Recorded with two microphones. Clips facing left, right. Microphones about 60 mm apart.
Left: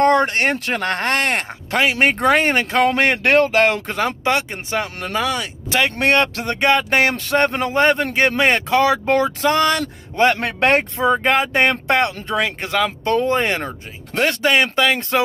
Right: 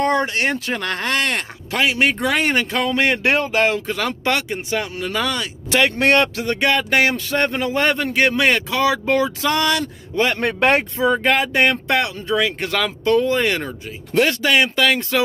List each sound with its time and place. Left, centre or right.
0.0 s speech: left
1.7 s speech: left
3.3 s speech: left
4.2 s speech: left
11.1 s speech: left
12.5 s speech: left
13.0 s speech: left